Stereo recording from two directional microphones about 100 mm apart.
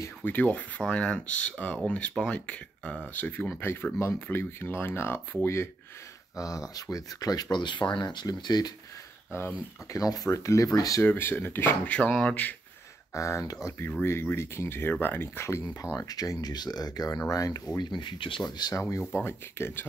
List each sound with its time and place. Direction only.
0.2 s speech: 20° left (ahead or behind)
6.3 s speech: 35° left (ahead or behind)
9.9 s speech: 35° left (ahead or behind)
11.0 s speech: 20° left (ahead or behind)
13.1 s speech: 30° left (ahead or behind)
16.0 s speech: 40° left (ahead or behind)
17.7 s speech: 50° left (ahead or behind)
18.4 s speech: 40° left (ahead or behind)
18.8 s speech: 25° left (ahead or behind)